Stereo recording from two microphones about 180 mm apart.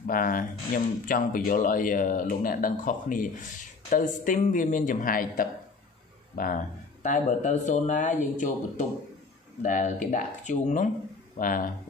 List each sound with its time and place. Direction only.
0.0 s speech: 50° left (ahead or behind)